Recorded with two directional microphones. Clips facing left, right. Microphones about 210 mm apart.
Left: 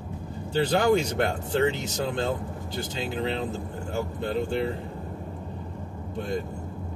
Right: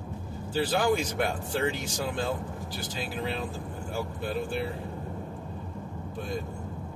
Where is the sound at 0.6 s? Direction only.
25° left (ahead or behind).